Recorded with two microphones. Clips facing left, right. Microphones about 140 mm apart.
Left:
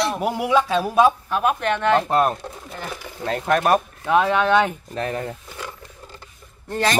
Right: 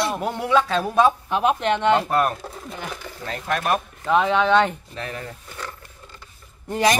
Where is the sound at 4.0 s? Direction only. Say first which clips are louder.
Right 3 dB; 5° left (ahead or behind).